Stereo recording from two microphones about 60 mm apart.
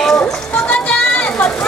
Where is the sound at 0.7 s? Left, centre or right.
Left.